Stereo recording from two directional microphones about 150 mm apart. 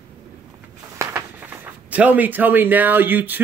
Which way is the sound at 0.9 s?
15° right (ahead or behind).